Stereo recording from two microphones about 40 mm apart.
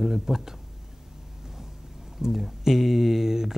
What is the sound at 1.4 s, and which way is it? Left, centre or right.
Vehicle, centre.